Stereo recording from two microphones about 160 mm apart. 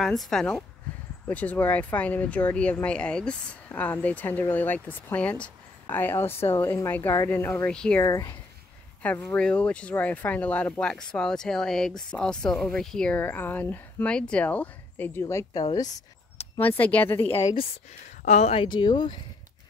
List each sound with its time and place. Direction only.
0.0 s speech: centre (ahead or behind)
8.0 s speech: 20° left (ahead or behind)
9.0 s speech: 10° left (ahead or behind)
16.5 s speech: 10° left (ahead or behind)
18.2 s a woman's voice: 45° left (ahead or behind); by 19.1 s 30° left (ahead or behind)